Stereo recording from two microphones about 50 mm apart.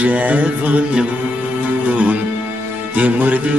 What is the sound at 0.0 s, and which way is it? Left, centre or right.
Music, right.